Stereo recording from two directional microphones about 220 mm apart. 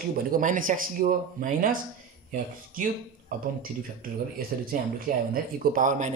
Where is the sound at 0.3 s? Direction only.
35° right (ahead or behind).